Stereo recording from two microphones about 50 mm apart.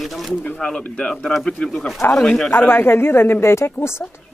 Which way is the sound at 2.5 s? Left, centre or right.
Left.